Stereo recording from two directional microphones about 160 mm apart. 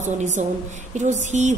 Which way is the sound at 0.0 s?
50° right (ahead or behind).